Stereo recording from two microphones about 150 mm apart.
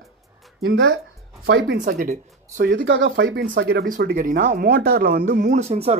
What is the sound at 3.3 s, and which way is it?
Speech, 90° right.